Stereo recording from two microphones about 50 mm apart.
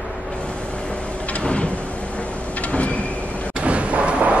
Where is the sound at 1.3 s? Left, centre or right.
Left.